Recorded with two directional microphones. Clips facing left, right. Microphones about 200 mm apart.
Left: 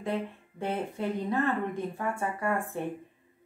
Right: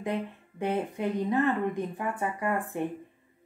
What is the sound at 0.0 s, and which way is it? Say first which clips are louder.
Speech: even; 15° right (ahead or behind).